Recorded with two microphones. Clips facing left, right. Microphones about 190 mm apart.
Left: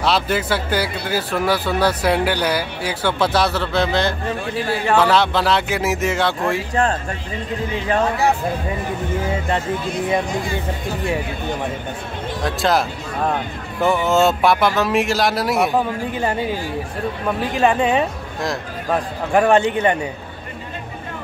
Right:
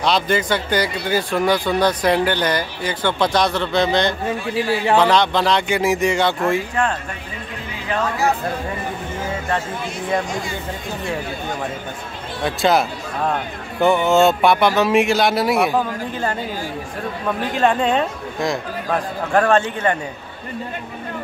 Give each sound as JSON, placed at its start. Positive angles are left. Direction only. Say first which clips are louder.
{"t": 0.0, "sound": "speech", "louder": "right 1 dB", "side_deg": 5}
{"t": 4.6, "sound": "speech", "louder": "right 1 dB", "side_deg": -15}
{"t": 5.0, "sound": "speech", "louder": "even", "side_deg": 5}
{"t": 6.7, "sound": "speech", "louder": "left 2 dB", "side_deg": 35}
{"t": 12.4, "sound": "speech", "louder": "right 2 dB", "side_deg": 0}
{"t": 17.6, "sound": "speech", "louder": "left 1 dB", "side_deg": 5}
{"t": 19.3, "sound": "speech", "louder": "left 2 dB", "side_deg": 15}